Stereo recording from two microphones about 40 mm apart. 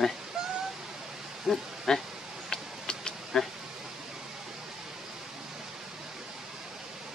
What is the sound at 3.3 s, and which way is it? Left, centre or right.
Speech, centre.